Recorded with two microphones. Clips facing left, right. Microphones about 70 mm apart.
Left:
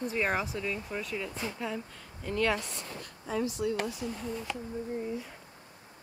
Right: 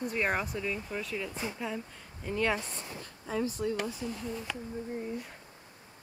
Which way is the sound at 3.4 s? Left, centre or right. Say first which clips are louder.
Left 2 dB; right.